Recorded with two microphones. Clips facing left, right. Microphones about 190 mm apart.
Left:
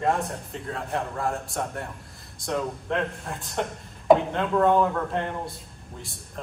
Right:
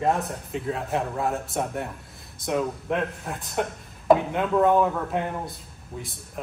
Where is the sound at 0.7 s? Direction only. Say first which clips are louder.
Right 2 dB; 20° right (ahead or behind).